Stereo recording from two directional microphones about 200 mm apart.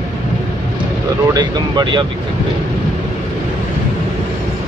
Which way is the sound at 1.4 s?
20° right (ahead or behind).